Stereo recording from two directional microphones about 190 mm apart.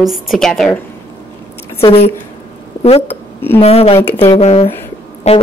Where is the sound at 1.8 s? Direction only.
30° left (ahead or behind).